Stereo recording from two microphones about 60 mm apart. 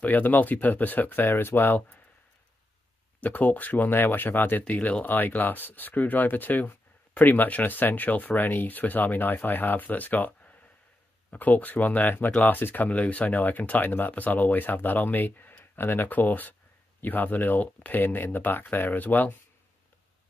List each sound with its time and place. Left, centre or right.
0.0 s speech: left
3.2 s speech: left